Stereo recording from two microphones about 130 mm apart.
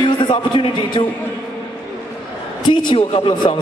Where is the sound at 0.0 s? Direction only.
40° left (ahead or behind).